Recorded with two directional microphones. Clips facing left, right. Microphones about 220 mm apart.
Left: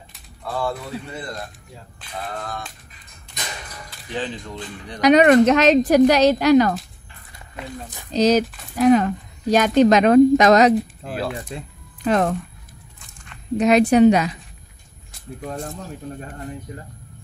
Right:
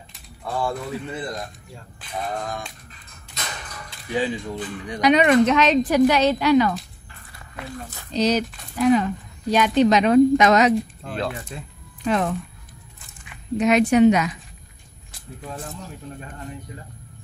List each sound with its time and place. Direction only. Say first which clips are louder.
4.1 s speech: right 4 dB; 10° right (ahead or behind)
5.0 s speech: left 4 dB; 45° left (ahead or behind)
8.1 s speech: left 4 dB; 45° left (ahead or behind)
10.7 s speech: left 2 dB; 5° left (ahead or behind)
12.0 s speech: left 3 dB; 45° left (ahead or behind)
13.6 s a woman's voice: left 2 dB; 35° left (ahead or behind)